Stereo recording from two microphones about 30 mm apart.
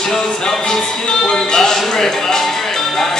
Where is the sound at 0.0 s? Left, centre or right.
Centre.